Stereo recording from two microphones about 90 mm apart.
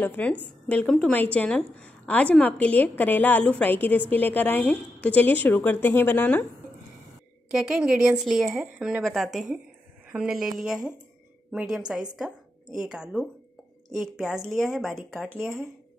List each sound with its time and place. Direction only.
0.0 s a woman's voice: 20° left (ahead or behind)
7.5 s a woman's voice: 10° right (ahead or behind)